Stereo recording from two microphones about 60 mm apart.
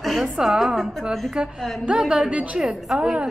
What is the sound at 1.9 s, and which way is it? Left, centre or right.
A woman's voice, centre.